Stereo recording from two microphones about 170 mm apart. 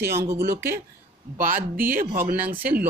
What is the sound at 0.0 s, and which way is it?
Speech, 70° right (ahead or behind).